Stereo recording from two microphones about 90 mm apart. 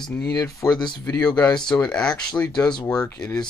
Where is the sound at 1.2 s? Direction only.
10° left (ahead or behind).